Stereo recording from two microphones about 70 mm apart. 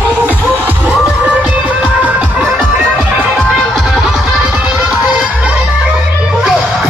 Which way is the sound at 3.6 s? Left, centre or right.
Centre.